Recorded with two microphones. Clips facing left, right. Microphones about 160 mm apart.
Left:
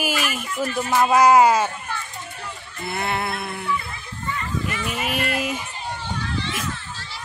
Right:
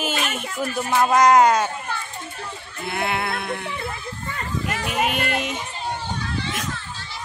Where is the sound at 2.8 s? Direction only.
Centre (ahead or behind).